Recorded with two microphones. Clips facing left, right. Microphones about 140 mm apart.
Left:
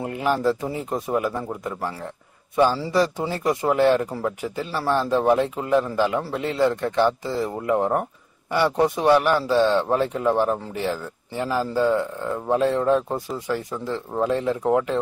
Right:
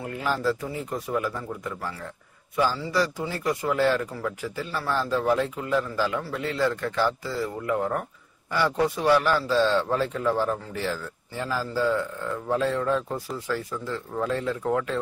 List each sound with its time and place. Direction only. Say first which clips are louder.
0.0 s speech: left 5 dB; 20° left (ahead or behind)